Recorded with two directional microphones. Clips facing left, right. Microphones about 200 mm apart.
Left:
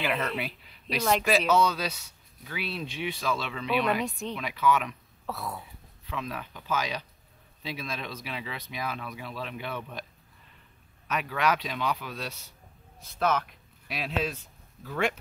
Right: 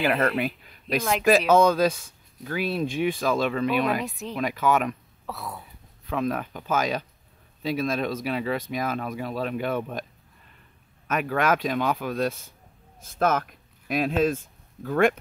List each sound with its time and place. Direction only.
0.0 s speech: 50° right (ahead or behind)
4.0 s speech: centre (ahead or behind)
4.4 s speech: 45° right (ahead or behind)
5.2 s a sound: centre (ahead or behind)
6.0 s speech: 50° right (ahead or behind)
11.1 s speech: 50° right (ahead or behind)